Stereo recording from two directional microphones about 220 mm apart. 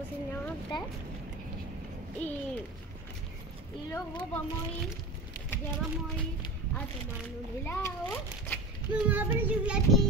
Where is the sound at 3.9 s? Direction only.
15° left (ahead or behind).